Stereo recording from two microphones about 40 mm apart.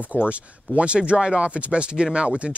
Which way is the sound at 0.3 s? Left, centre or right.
Right.